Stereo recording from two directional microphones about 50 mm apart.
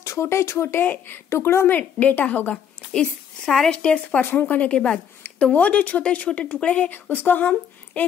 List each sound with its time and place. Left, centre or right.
0.0 s speech: left
0.8 s a woman's voice: left
1.7 s speech: left
2.5 s a woman's voice: centre
4.2 s speech: left
4.7 s speech: centre
5.2 s speech: left
6.9 s speech: left